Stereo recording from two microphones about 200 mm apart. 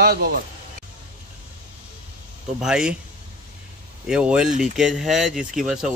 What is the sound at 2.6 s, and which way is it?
Speech, 5° right (ahead or behind).